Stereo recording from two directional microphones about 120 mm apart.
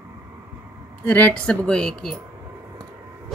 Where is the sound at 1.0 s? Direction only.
10° left (ahead or behind).